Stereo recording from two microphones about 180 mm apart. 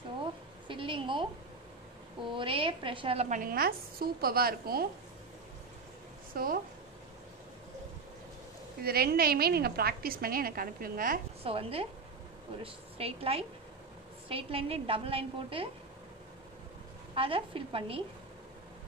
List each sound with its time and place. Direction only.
0.2 s a sound: 30° right (ahead or behind)
2.2 s a woman's voice: 30° right (ahead or behind); by 4.8 s 55° right (ahead or behind)
6.3 s a woman's voice: 55° right (ahead or behind)
8.8 s a woman's voice: 60° right (ahead or behind)
11.4 s a woman's voice: 30° right (ahead or behind)
17.1 s a woman's voice: 30° right (ahead or behind)